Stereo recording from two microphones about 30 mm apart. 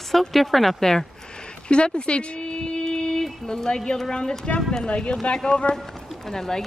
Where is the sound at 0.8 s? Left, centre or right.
Centre.